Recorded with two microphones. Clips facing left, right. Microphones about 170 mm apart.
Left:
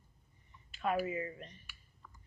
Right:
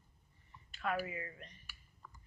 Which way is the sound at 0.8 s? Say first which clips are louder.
Left 4 dB; 25° left (ahead or behind).